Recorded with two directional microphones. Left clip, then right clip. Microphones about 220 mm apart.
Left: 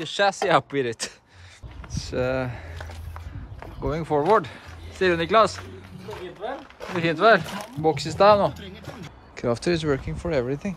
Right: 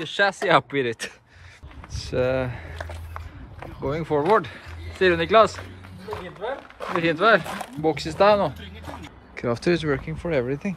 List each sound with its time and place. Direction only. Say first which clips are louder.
0.0 s speech: even; 5° left (ahead or behind)
6.9 s speech: even; centre (ahead or behind)
8.5 s a sound: right 1 dB; 40° left (ahead or behind)
9.3 s speech: right 1 dB; 5° left (ahead or behind)